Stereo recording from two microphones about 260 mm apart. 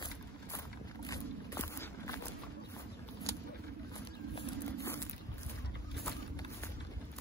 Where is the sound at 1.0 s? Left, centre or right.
Centre.